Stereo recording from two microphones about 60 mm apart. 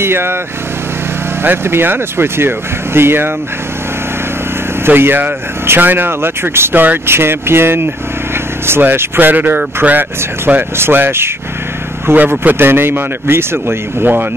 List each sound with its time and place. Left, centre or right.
0.0 s speech: right
1.4 s speech: right
4.8 s speech: right